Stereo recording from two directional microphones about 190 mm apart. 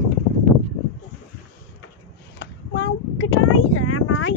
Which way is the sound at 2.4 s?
75° left (ahead or behind).